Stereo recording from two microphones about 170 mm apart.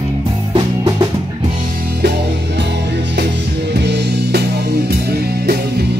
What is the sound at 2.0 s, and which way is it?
Music, 90° right.